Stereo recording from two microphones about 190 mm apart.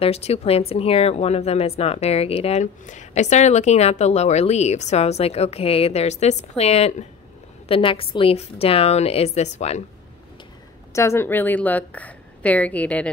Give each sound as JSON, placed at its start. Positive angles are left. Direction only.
{"t": 0.0, "sound": "a woman's voice", "side_deg": 30}
{"t": 10.9, "sound": "a woman's voice", "side_deg": 15}